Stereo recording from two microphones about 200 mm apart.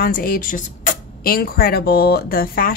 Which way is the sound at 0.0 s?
45° left (ahead or behind).